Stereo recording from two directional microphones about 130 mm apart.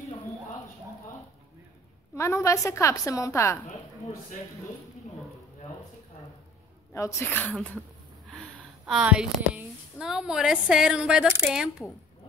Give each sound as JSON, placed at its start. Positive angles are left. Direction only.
{"t": 2.1, "sound": "a woman's voice", "side_deg": 20}
{"t": 6.9, "sound": "a woman's voice", "side_deg": 25}
{"t": 8.3, "sound": "a woman's voice", "side_deg": 0}